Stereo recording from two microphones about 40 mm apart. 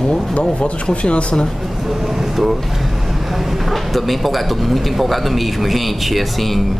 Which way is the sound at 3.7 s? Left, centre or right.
Centre.